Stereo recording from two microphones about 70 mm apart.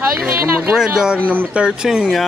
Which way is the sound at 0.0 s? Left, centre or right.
Right.